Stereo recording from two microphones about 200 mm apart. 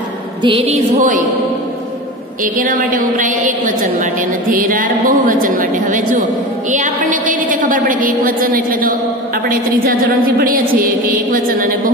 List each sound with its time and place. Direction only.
0.4 s music: 25° right (ahead or behind)
2.4 s a woman's voice: 40° right (ahead or behind)